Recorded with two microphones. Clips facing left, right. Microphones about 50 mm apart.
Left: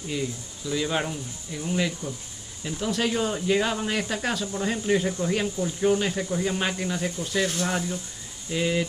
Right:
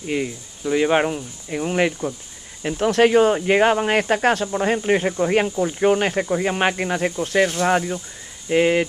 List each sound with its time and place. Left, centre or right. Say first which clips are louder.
0.0 s speech: right 6 dB; right